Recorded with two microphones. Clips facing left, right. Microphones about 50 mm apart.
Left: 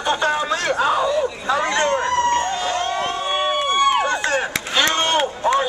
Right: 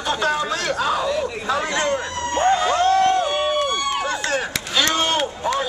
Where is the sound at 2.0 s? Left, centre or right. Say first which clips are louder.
Left 7 dB; left.